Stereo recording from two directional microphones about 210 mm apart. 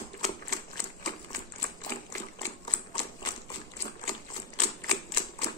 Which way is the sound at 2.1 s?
15° left (ahead or behind).